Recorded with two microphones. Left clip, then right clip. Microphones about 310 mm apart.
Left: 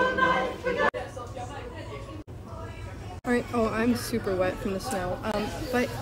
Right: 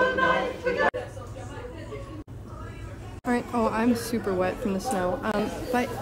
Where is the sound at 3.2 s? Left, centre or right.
Centre.